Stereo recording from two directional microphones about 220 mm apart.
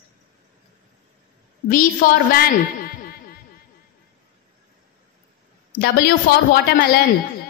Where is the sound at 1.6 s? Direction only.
40° left (ahead or behind).